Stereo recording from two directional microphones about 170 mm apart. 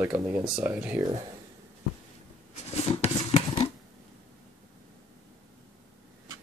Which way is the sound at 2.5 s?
40° left (ahead or behind).